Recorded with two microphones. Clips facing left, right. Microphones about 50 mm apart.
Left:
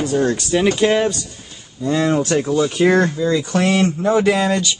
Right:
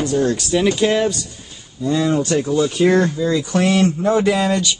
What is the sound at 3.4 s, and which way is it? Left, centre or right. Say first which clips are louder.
Speech: right 1 dB; left.